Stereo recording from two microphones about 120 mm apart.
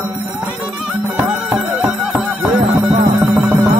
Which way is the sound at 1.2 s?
15° right (ahead or behind).